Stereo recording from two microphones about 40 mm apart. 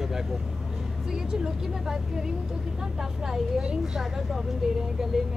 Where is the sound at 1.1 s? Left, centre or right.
Centre.